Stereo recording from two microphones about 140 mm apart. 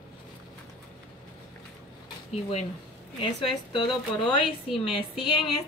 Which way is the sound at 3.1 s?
40° left (ahead or behind).